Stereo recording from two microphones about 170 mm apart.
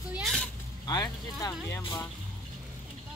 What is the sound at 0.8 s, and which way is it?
Speech, 20° left (ahead or behind).